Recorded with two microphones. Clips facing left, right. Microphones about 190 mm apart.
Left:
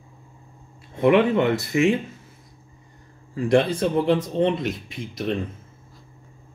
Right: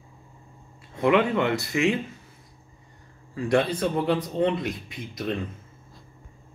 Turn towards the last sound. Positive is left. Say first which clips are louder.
# left 3 dB
turn(degrees=25)  # may be behind; listen again after turning